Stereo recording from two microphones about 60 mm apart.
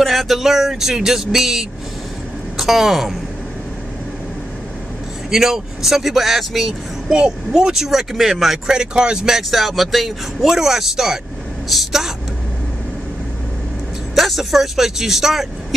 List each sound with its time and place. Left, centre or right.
0.0 s a woman's voice: centre
5.3 s speech: centre
7.2 s speech: centre
14.1 s speech: centre